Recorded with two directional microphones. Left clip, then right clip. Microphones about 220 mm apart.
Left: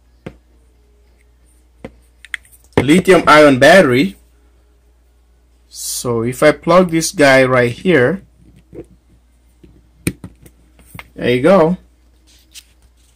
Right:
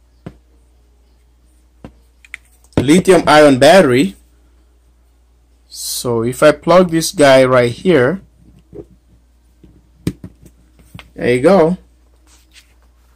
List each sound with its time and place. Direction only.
2.7 s a sound: centre (ahead or behind)
3.1 s speech: centre (ahead or behind)
5.7 s speech: centre (ahead or behind)
11.1 s speech: 10° left (ahead or behind)